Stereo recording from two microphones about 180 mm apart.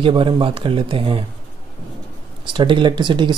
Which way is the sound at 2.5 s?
25° right (ahead or behind).